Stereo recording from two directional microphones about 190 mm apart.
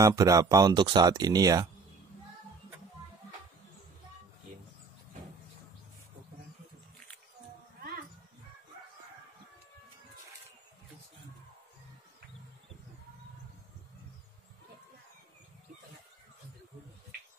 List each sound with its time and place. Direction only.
0.0 s speech: 15° right (ahead or behind)